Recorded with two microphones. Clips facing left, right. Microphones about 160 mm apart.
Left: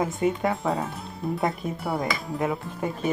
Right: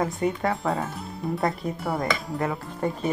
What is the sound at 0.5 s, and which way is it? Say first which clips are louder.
Speech: even; centre (ahead or behind).